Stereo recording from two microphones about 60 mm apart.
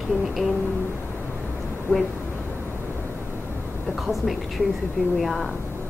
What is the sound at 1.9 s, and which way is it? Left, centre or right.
Speech, left.